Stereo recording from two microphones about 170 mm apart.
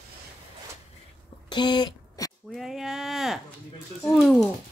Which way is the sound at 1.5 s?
25° left (ahead or behind).